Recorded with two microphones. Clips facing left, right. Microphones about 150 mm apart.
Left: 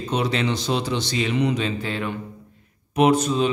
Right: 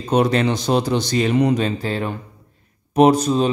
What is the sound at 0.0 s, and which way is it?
A man's voice, 45° right (ahead or behind).